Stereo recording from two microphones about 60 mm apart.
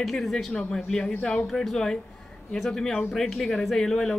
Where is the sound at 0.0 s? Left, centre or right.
Centre.